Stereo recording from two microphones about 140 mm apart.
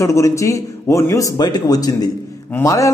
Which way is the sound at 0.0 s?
20° left (ahead or behind).